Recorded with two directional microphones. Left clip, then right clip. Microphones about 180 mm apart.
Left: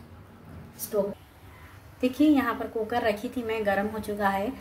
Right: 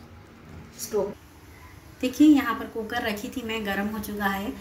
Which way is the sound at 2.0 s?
30° left (ahead or behind).